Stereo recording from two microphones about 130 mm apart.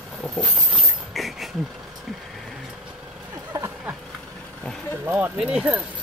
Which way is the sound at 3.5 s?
20° right (ahead or behind).